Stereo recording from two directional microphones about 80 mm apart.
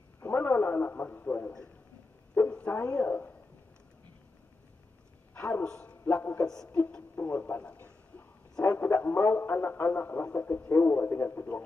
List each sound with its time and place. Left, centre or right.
0.2 s radio: left
2.4 s a sound: left
2.7 s speech: left
5.3 s a man's voice: left
6.1 s a woman's voice: left
7.7 s a sound: left
8.6 s speech: left